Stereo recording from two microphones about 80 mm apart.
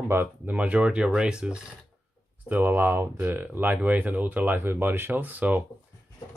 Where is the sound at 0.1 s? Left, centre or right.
Right.